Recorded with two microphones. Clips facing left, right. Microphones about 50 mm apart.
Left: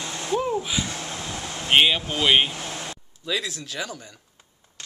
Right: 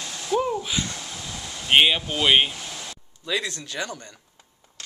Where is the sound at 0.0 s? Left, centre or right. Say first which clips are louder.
Even; left.